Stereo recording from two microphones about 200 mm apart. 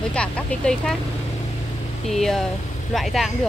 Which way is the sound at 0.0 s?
5° left (ahead or behind).